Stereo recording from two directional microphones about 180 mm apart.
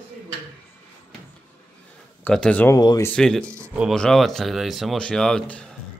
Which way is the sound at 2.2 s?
5° left (ahead or behind).